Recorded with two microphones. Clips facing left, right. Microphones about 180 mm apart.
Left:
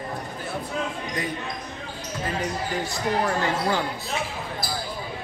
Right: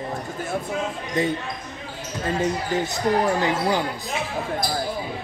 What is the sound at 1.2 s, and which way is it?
Speech, 25° right (ahead or behind).